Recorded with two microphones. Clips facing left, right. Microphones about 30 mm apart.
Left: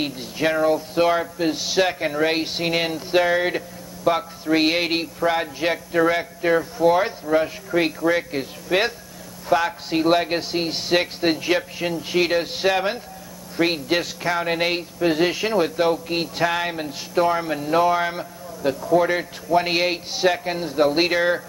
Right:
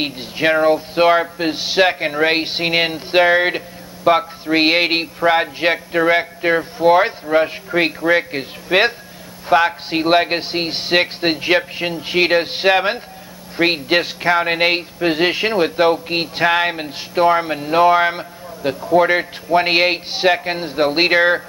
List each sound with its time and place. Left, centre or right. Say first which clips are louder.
0.0 s speech: right 4 dB; right